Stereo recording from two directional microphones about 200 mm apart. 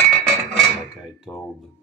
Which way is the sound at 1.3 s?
20° left (ahead or behind).